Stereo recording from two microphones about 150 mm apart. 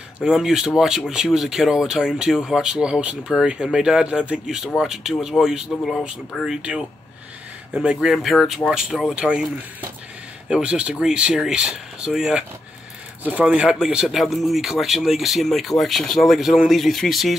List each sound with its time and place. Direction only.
0.2 s speech: 5° right (ahead or behind)